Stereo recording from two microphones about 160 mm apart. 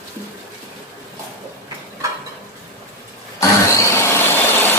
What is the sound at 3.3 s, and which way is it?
Vehicle, 15° left (ahead or behind).